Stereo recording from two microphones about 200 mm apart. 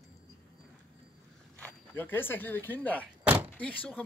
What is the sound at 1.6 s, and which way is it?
Speech, 10° left (ahead or behind).